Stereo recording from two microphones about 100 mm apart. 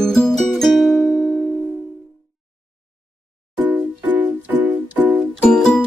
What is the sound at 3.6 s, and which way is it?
Music, 15° right (ahead or behind).